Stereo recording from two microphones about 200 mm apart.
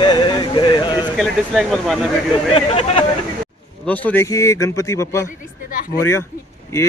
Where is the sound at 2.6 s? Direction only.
30° left (ahead or behind).